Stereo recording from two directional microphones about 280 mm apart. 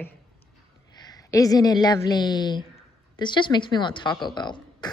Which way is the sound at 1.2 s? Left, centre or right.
Centre.